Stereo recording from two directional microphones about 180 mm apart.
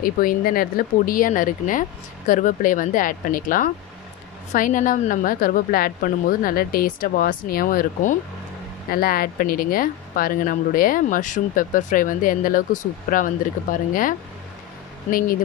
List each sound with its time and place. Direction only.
0.0 s speech: 50° left (ahead or behind)